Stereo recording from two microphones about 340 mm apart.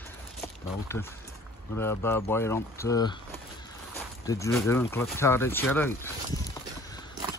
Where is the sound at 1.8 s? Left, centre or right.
Centre.